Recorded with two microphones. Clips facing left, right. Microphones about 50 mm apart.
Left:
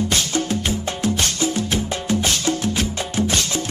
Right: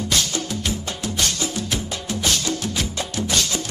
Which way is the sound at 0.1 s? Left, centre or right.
Left.